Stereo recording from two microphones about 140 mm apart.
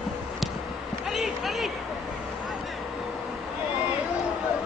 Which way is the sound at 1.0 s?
Centre (ahead or behind).